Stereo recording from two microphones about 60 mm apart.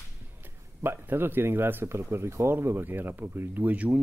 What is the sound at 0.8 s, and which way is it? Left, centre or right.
Speech, right.